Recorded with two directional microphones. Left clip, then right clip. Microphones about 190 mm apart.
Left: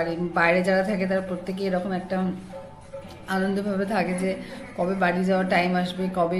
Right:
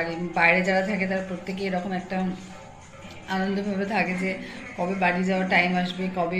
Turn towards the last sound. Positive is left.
turn(degrees=20)  # may be behind; listen again after turning